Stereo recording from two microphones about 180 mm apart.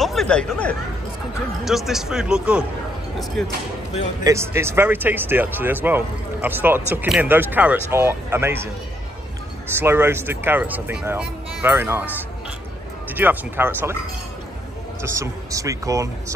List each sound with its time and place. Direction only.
0.0 s speech: centre (ahead or behind)
4.2 s speech: 15° right (ahead or behind)
9.8 s speech: 15° right (ahead or behind)
13.1 s speech: 10° right (ahead or behind)
15.0 s speech: 15° right (ahead or behind)